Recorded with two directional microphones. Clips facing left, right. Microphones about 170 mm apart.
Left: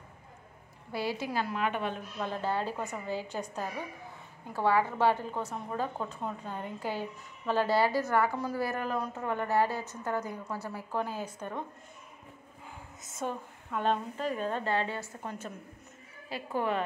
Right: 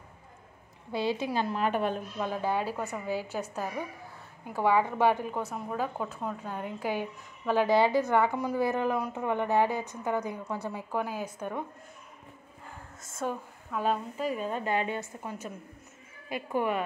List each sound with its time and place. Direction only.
0.9 s a woman's voice: 20° right (ahead or behind); by 2.0 s 40° right (ahead or behind)
2.1 s a woman's voice: 10° right (ahead or behind)
13.1 s a woman's voice: centre (ahead or behind)